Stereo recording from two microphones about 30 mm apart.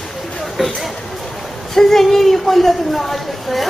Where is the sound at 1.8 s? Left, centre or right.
Centre.